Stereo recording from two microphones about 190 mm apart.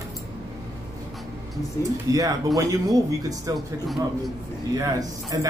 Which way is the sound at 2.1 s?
20° right (ahead or behind).